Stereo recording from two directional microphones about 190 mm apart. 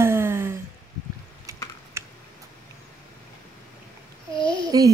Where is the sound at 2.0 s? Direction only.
15° right (ahead or behind).